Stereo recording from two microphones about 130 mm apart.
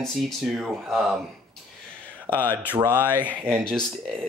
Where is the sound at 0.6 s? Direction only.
5° right (ahead or behind).